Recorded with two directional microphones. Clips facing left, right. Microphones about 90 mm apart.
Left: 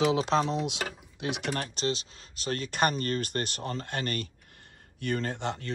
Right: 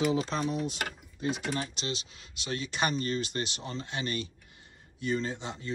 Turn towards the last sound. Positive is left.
turn(degrees=60)  # may be behind; listen again after turning